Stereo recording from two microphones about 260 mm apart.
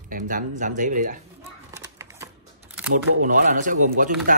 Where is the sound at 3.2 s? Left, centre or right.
Right.